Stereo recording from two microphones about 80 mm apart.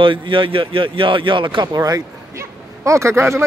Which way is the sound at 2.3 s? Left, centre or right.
Right.